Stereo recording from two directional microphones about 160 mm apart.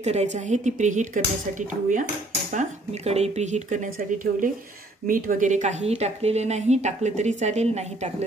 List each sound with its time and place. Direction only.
0.0 s a woman's voice: 45° right (ahead or behind)
2.5 s a woman's voice: 45° right (ahead or behind)